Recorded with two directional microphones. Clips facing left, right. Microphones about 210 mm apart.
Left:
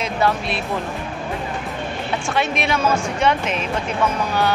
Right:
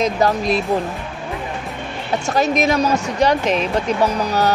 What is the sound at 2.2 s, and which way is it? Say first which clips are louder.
Speech: right 6 dB; 40° right (ahead or behind).